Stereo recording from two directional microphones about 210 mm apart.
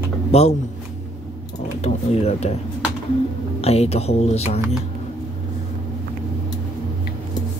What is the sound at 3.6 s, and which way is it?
Speech, 30° left (ahead or behind).